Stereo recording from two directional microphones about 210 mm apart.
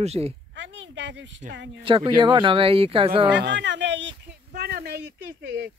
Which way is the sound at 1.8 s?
25° right (ahead or behind).